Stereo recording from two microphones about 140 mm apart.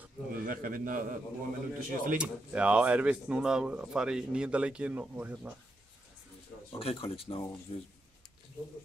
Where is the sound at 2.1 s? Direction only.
10° right (ahead or behind).